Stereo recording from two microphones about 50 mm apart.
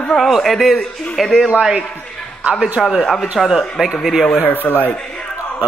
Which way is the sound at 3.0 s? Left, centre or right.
Centre.